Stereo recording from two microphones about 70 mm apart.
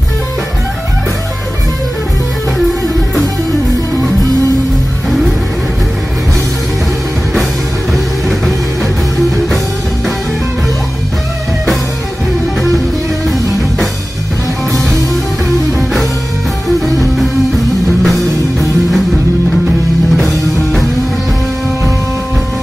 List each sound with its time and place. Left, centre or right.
7.9 s music: centre
16.8 s music: centre
20.2 s music: centre